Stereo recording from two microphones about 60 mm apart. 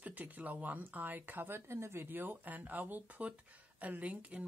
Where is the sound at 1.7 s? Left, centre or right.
Right.